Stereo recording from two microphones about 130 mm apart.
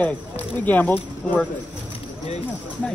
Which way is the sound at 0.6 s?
15° left (ahead or behind).